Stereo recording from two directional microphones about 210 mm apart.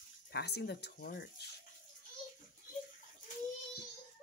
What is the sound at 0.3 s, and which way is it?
Speech, 50° left (ahead or behind).